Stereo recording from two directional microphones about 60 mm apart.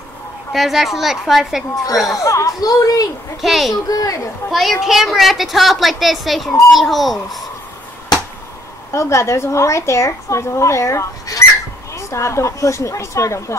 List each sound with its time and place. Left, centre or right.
0.5 s a woman's voice: centre
2.0 s speech: left
3.3 s a woman's voice: centre
3.7 s speech: left
4.5 s a woman's voice: centre
8.9 s a woman's voice: left
11.4 s bird: left
11.9 s speech: left